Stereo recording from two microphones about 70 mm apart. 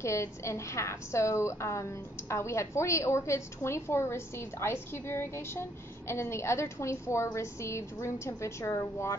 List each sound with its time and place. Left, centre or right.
0.0 s a woman's voice: left